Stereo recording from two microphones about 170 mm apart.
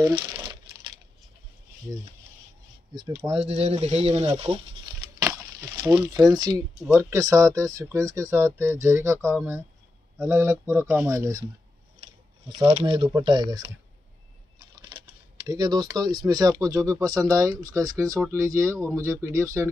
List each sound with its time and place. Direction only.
0.0 s crumpling: 25° right (ahead or behind)
2.9 s speech: 30° right (ahead or behind)
5.2 s a sound: 15° right (ahead or behind)
6.1 s speech: 25° right (ahead or behind)
12.4 s speech: 25° right (ahead or behind)
15.4 s speech: 25° right (ahead or behind)